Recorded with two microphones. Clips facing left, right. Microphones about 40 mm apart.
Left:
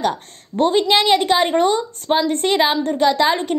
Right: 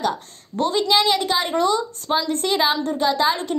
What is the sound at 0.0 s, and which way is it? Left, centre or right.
A woman's voice, left.